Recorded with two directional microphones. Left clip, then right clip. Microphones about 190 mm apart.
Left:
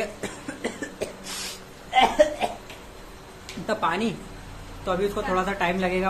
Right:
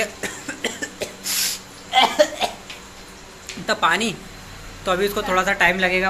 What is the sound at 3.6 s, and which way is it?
Speech, 5° right (ahead or behind).